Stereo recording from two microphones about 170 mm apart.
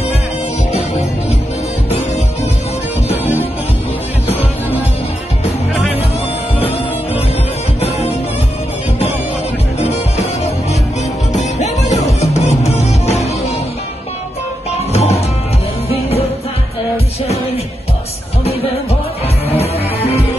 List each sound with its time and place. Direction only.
7.8 s music: 35° left (ahead or behind)
9.8 s music: 40° left (ahead or behind)
14.9 s music: 35° left (ahead or behind)
19.5 s music: 35° left (ahead or behind)